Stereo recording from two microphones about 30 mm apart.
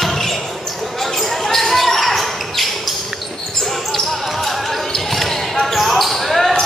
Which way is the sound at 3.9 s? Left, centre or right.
Centre.